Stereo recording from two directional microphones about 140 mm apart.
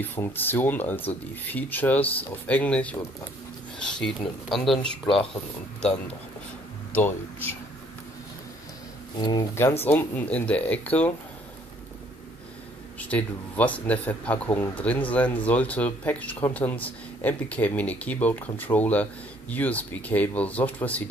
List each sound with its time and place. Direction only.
0.0 s speech: 15° left (ahead or behind)
5.0 s speech: 40° left (ahead or behind)
6.9 s speech: 15° left (ahead or behind)
9.6 s speech: 15° left (ahead or behind)
13.1 s speech: 10° left (ahead or behind)